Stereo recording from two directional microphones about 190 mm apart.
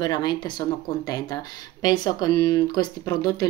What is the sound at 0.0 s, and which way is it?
Speech, 20° left (ahead or behind).